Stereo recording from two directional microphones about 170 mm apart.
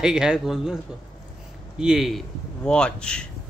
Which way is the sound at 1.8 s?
5° right (ahead or behind).